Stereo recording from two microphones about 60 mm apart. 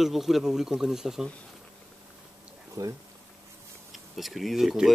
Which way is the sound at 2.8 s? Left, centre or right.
Right.